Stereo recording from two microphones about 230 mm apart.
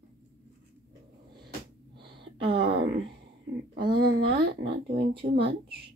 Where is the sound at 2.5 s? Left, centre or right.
Right.